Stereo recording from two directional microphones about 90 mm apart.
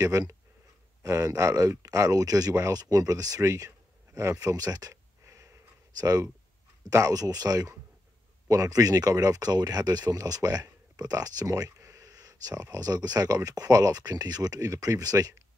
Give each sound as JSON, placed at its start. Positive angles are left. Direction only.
{"t": 0.0, "sound": "speech", "side_deg": -40}
{"t": 5.2, "sound": "a sound", "side_deg": -35}
{"t": 6.9, "sound": "speech", "side_deg": -40}